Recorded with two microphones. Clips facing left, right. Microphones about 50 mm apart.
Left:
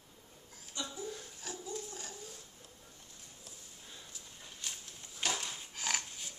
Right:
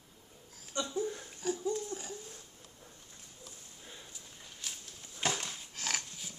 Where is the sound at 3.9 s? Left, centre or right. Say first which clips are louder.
Right 2 dB; centre.